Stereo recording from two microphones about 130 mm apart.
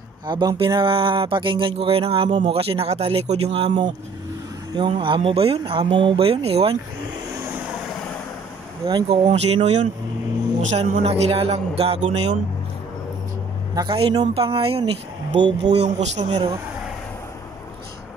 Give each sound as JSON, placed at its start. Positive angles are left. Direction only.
{"t": 0.3, "sound": "speech", "side_deg": -35}
{"t": 9.1, "sound": "speech", "side_deg": -50}
{"t": 13.7, "sound": "speech", "side_deg": -35}
{"t": 14.2, "sound": "speech", "side_deg": -45}
{"t": 15.6, "sound": "speech", "side_deg": -65}
{"t": 16.3, "sound": "speech", "side_deg": -35}